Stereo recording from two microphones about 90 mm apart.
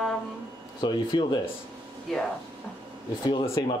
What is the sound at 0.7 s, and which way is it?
Speech, 55° left (ahead or behind).